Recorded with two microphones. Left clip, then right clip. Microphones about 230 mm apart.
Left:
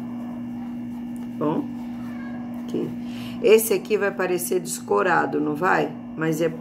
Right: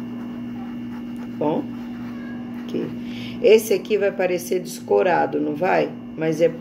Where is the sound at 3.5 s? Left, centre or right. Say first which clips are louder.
Right 2 dB; left.